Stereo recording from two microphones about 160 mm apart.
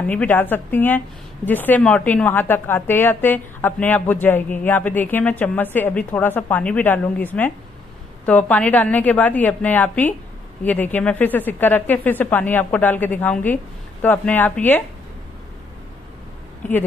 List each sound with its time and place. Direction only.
0.1 s a woman's voice: 10° left (ahead or behind)